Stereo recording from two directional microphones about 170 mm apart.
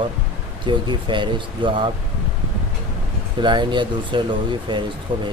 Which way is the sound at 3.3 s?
25° right (ahead or behind).